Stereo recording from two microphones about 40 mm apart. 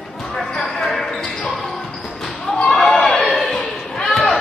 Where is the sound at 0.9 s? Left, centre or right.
Centre.